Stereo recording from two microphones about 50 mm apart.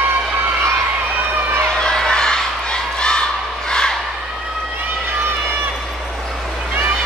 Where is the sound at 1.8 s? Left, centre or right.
Centre.